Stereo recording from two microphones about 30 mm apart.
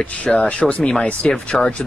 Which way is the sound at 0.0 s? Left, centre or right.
Left.